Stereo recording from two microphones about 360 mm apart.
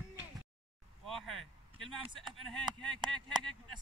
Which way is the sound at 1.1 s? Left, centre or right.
Centre.